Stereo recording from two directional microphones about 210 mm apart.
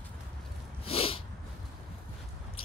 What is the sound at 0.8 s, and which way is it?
Sneeze, 25° left (ahead or behind).